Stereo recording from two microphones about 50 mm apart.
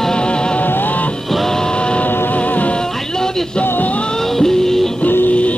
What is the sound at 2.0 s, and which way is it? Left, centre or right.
Music, left.